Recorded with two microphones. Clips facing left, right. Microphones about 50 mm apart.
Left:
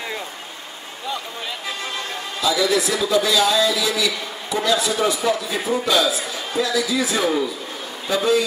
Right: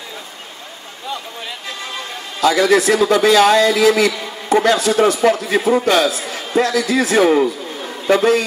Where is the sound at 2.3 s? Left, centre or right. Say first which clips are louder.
Right 6 dB; right.